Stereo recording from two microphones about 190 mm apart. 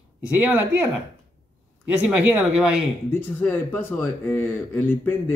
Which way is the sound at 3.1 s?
10° left (ahead or behind).